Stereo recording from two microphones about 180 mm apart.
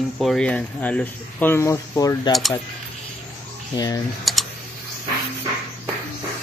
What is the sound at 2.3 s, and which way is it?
Speech, centre (ahead or behind).